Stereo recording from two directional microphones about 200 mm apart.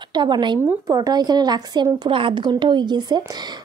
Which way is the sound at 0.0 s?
20° right (ahead or behind).